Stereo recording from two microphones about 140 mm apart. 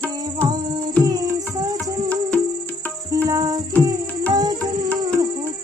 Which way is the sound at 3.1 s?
25° right (ahead or behind).